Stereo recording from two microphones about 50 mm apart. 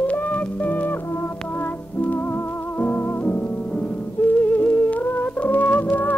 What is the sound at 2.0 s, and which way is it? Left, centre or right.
Music, left.